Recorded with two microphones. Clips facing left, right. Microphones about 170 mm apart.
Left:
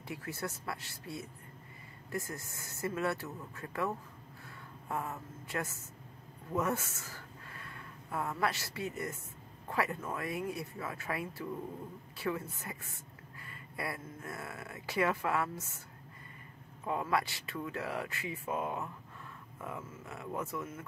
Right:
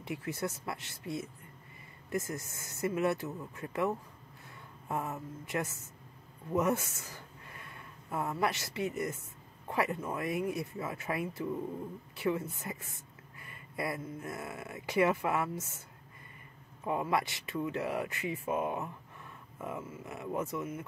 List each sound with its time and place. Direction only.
0.0 s speech: 20° right (ahead or behind)
16.8 s speech: 20° right (ahead or behind)